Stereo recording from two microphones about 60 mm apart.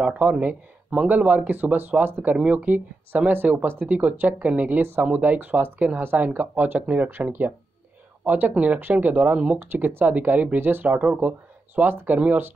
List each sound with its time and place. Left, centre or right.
0.0 s speech: right